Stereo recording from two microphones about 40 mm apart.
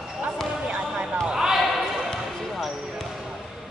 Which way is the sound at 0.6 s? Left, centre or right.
Centre.